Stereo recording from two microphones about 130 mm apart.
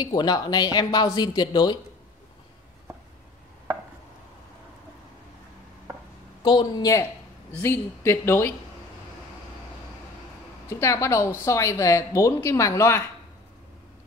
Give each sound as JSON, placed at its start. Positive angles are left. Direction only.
{"t": 0.0, "sound": "speech", "side_deg": 30}
{"t": 6.4, "sound": "speech", "side_deg": 35}
{"t": 10.7, "sound": "speech", "side_deg": 25}